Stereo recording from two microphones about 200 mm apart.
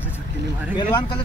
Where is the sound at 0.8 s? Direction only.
25° left (ahead or behind).